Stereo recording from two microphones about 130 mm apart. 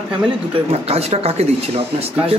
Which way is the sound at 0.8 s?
50° right (ahead or behind).